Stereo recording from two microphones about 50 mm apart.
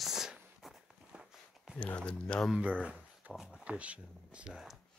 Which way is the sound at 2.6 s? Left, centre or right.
Right.